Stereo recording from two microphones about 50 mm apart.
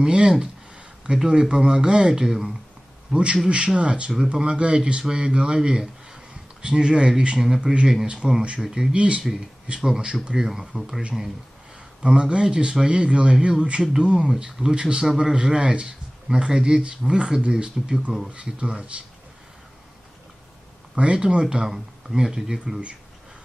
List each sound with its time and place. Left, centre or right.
0.0 s speech: centre
3.1 s a man's voice: right
12.0 s speech: centre
20.9 s speech: right